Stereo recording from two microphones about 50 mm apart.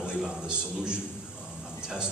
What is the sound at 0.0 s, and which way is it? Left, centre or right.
A man's voice, centre.